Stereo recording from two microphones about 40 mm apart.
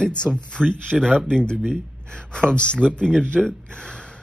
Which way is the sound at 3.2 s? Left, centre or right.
Left.